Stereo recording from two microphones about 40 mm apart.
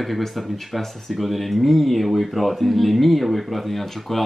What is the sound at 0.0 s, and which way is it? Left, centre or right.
Speech, centre.